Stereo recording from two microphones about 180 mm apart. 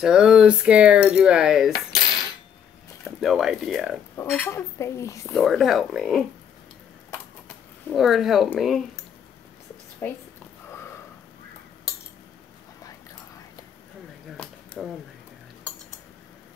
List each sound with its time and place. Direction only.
0.0 s speech: 5° right (ahead or behind)
3.2 s speech: centre (ahead or behind)
4.2 s speech: 10° left (ahead or behind)
5.3 s speech: centre (ahead or behind)
7.9 s speech: centre (ahead or behind)
10.0 s speech: 10° left (ahead or behind)
14.3 s a sound: 5° left (ahead or behind)